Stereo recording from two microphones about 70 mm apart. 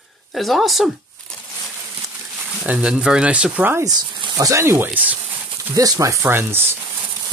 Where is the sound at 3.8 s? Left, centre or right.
Right.